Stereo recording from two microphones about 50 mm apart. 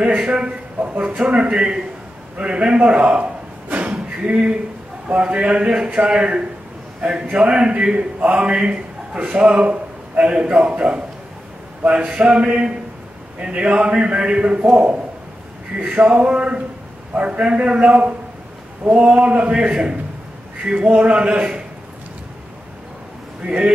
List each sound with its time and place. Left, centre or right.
0.3 s a man's voice: right
1.1 s a man's voice: right
3.8 s a sound: right
5.0 s a man's voice: right
15.8 s a man's voice: right
23.4 s a man's voice: centre